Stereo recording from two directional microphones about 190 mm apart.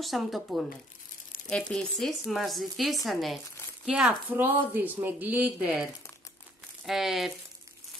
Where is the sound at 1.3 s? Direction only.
50° left (ahead or behind).